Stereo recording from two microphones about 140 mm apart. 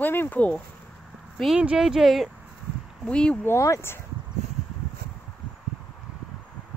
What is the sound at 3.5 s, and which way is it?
Speech, 20° left (ahead or behind).